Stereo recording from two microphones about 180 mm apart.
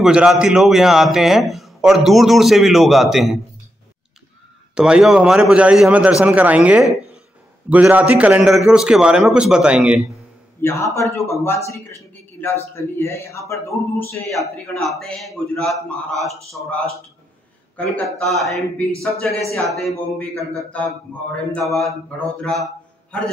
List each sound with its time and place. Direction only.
0.0 s a man's voice: 5° right (ahead or behind)
4.7 s a man's voice: 5° right (ahead or behind)
10.6 s a man's voice: 15° left (ahead or behind)
14.2 s a man's voice: centre (ahead or behind)
17.7 s a man's voice: 5° left (ahead or behind)
19.7 s a man's voice: centre (ahead or behind)